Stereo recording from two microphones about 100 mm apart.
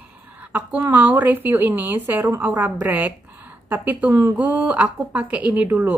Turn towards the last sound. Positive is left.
turn(degrees=-15)  # may be behind; listen again after turning